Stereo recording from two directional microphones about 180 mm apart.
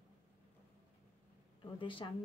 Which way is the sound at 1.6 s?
30° left (ahead or behind).